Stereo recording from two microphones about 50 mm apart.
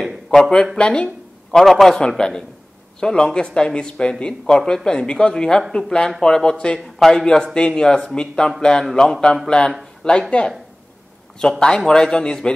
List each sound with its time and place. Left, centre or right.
0.3 s speech: centre
0.7 s a sound: centre
1.6 s a man's voice: centre
11.4 s speech: centre